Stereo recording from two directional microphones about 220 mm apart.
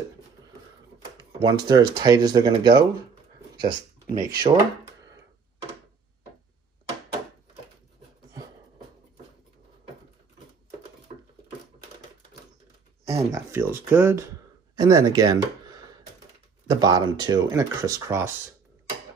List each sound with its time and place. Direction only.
1.4 s speech: 20° right (ahead or behind)
13.0 s speech: 15° right (ahead or behind)
16.6 s speech: 15° right (ahead or behind)